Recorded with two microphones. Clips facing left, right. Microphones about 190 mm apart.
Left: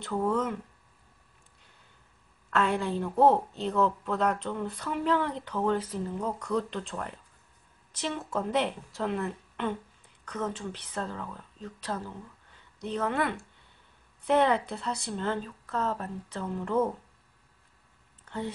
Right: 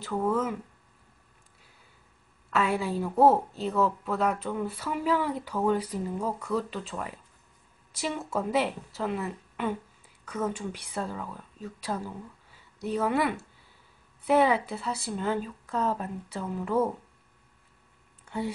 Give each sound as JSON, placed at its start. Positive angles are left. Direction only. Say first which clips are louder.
{"t": 0.0, "sound": "a woman's voice", "louder": "right 1 dB", "side_deg": -5}
{"t": 2.5, "sound": "a woman's voice", "louder": "even", "side_deg": -5}
{"t": 18.2, "sound": "a sound", "louder": "right 3 dB", "side_deg": -10}